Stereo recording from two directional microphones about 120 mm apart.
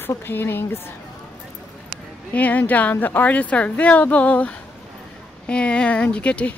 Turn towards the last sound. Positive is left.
turn(degrees=10)  # may be behind; listen again after turning